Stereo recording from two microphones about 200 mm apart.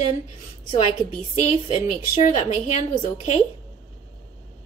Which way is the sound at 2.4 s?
35° left (ahead or behind).